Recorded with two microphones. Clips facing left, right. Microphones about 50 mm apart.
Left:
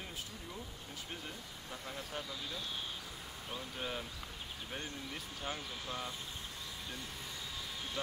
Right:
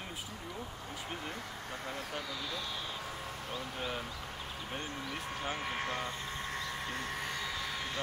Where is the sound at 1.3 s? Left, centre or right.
Right.